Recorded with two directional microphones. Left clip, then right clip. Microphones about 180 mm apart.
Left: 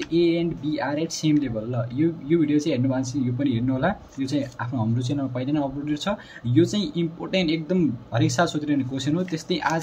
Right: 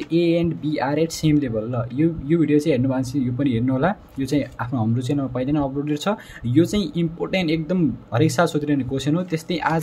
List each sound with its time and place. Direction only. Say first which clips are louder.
0.1 s speech: right 2 dB; 35° right (ahead or behind)